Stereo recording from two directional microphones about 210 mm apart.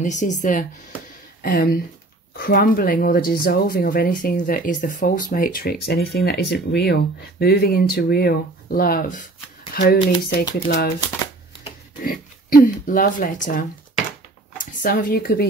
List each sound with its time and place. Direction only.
0.0 s speech: 35° left (ahead or behind)
12.0 s speech: 45° left (ahead or behind)